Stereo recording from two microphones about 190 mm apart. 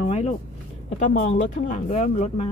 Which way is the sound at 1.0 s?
45° left (ahead or behind).